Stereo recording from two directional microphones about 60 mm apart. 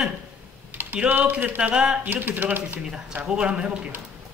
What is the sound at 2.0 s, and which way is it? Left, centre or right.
Speech, right.